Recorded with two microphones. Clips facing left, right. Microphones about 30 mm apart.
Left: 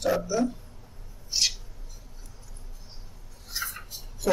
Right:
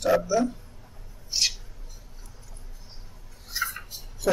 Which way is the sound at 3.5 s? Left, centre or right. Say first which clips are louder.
Right 4 dB; centre.